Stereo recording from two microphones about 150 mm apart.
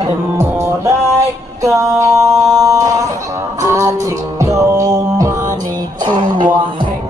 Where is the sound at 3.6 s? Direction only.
20° right (ahead or behind).